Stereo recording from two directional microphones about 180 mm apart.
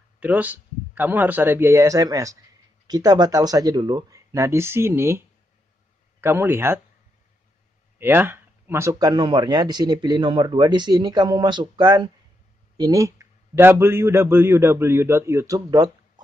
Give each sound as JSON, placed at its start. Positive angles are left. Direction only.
{"t": 0.2, "sound": "a man's voice", "side_deg": -10}
{"t": 6.2, "sound": "a man's voice", "side_deg": -10}
{"t": 8.0, "sound": "a man's voice", "side_deg": -10}